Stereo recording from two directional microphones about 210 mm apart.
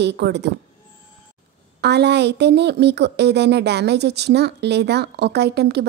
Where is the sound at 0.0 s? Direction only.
55° right (ahead or behind).